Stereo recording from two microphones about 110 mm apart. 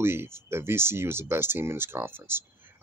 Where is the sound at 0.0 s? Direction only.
20° right (ahead or behind).